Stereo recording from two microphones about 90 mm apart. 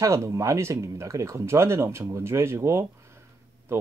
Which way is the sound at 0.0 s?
35° right (ahead or behind).